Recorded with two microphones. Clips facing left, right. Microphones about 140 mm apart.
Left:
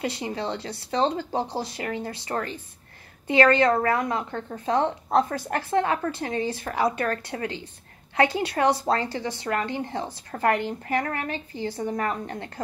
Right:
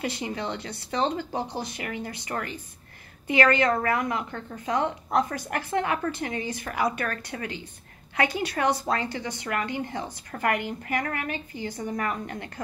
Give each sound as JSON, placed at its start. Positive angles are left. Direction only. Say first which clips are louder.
{"t": 0.0, "sound": "a woman's voice", "louder": "left 2 dB", "side_deg": 25}
{"t": 3.3, "sound": "a woman's voice", "louder": "left 3 dB", "side_deg": 25}
{"t": 5.3, "sound": "a woman's voice", "louder": "left 3 dB", "side_deg": -20}
{"t": 5.7, "sound": "a woman's voice", "louder": "left 3 dB", "side_deg": 25}
{"t": 6.2, "sound": "a woman's voice", "louder": "left 3 dB", "side_deg": -15}
{"t": 6.6, "sound": "a woman's voice", "louder": "left 1 dB", "side_deg": 25}
{"t": 10.9, "sound": "a woman's voice", "louder": "left 2 dB", "side_deg": 30}
{"t": 11.2, "sound": "a woman's voice", "louder": "left 1 dB", "side_deg": -15}
{"t": 11.6, "sound": "a woman's voice", "louder": "left 3 dB", "side_deg": 25}